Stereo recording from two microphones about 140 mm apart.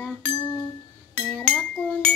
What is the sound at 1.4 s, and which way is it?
Speech, 10° left (ahead or behind).